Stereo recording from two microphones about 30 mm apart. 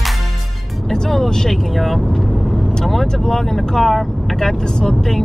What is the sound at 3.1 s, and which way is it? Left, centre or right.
Vehicle, centre.